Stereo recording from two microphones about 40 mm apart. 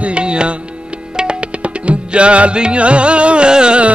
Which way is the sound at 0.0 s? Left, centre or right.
Right.